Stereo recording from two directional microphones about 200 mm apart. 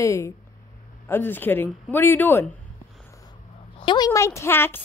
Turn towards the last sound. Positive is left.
turn(degrees=10)  # may be behind; listen again after turning